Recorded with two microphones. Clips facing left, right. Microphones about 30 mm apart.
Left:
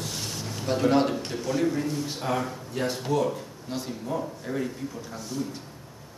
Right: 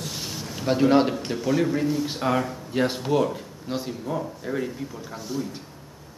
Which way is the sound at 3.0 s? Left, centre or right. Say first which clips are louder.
Right 3 dB; centre.